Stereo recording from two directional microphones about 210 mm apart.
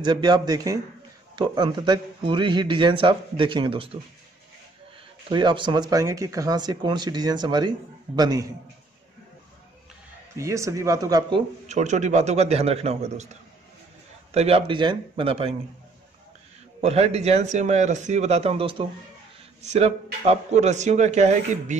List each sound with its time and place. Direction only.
0.0 s a man's voice: 20° right (ahead or behind)
5.3 s a man's voice: 20° right (ahead or behind)
10.3 s speech: 15° right (ahead or behind)
11.6 s a man's voice: 35° right (ahead or behind)
16.8 s a man's voice: 30° right (ahead or behind)